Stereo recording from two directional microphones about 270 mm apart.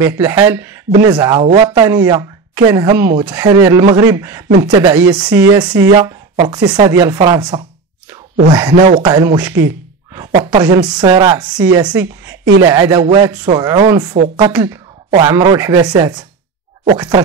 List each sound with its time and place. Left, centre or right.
0.0 s speech: centre